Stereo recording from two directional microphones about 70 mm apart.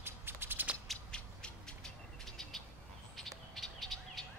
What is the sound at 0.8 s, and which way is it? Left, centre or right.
Bird, centre.